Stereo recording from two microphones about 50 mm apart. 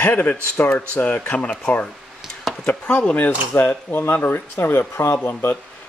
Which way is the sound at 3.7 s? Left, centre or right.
Left.